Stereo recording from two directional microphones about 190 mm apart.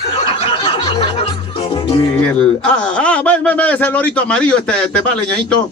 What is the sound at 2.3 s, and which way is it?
A man's voice, 5° left (ahead or behind).